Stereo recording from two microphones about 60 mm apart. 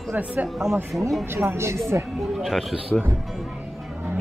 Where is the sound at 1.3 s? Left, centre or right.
Right.